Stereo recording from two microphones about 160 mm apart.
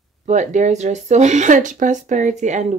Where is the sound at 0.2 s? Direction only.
50° right (ahead or behind).